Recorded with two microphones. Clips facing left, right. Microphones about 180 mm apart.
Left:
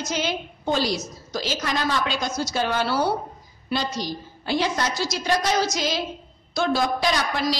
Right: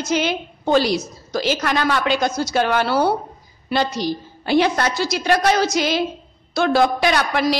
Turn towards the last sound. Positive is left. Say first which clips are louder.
# right 5 dB
turn(degrees=-60)  # may be behind; listen again after turning